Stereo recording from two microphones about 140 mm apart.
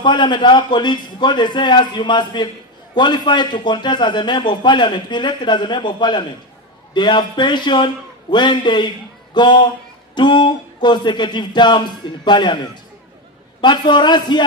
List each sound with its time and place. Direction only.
0.0 s a man's voice: 35° left (ahead or behind)
13.6 s a man's voice: 35° left (ahead or behind)